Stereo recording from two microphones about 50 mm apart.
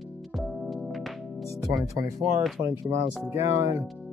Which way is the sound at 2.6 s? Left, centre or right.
Right.